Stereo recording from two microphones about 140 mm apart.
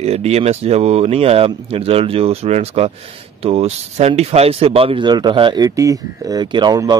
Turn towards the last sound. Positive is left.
turn(degrees=-30)  # may be behind; listen again after turning